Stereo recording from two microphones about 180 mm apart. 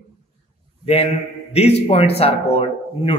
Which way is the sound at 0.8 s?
35° left (ahead or behind).